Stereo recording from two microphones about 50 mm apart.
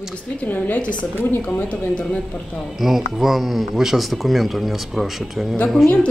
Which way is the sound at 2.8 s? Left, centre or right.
Centre.